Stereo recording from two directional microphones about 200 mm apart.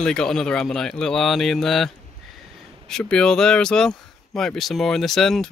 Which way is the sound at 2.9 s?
5° left (ahead or behind).